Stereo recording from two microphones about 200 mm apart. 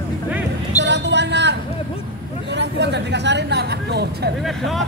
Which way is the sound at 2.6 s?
60° right (ahead or behind).